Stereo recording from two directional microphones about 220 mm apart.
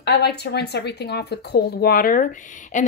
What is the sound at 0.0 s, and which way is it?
Speech, 50° left (ahead or behind).